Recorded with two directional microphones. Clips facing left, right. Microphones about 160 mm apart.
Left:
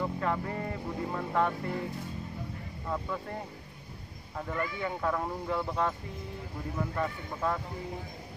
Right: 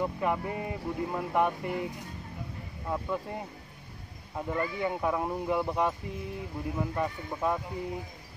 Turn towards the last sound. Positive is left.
turn(degrees=-15)  # may be behind; listen again after turning